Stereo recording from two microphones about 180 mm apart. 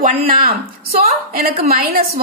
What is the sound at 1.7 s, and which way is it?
Speech, 55° right (ahead or behind).